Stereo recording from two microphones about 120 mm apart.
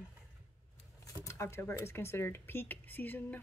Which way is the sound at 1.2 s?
25° left (ahead or behind).